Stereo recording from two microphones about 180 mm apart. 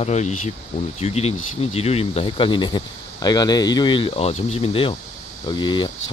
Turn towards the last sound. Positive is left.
turn(degrees=25)  # may be behind; listen again after turning